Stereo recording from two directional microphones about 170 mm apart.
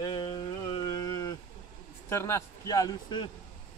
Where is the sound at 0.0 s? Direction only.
25° left (ahead or behind).